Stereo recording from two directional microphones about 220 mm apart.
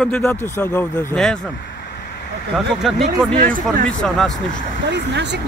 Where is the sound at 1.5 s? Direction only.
50° left (ahead or behind).